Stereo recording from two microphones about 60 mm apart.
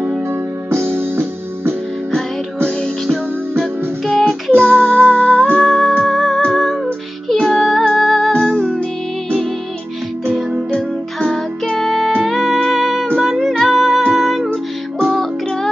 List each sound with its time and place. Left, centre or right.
0.3 s music: right
2.8 s music: centre
4.5 s music: right
4.8 s music: centre
5.7 s music: centre
8.3 s music: centre
10.7 s music: centre